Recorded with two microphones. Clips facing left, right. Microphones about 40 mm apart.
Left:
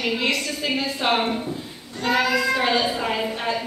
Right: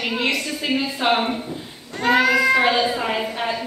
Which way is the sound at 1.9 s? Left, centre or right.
Right.